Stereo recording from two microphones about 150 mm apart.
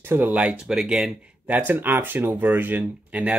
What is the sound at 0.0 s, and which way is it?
Speech, 15° right (ahead or behind).